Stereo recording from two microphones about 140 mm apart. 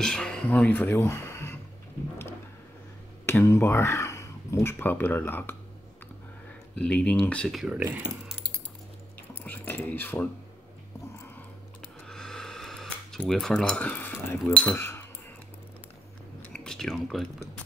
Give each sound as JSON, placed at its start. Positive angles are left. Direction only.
{"t": 0.0, "sound": "speech", "side_deg": 5}
{"t": 3.3, "sound": "speech", "side_deg": 20}
{"t": 6.7, "sound": "speech", "side_deg": 10}
{"t": 9.3, "sound": "speech", "side_deg": 15}
{"t": 12.1, "sound": "a sound", "side_deg": 5}
{"t": 14.4, "sound": "speech", "side_deg": 0}
{"t": 14.8, "sound": "cutlery", "side_deg": 15}
{"t": 16.5, "sound": "a sound", "side_deg": 5}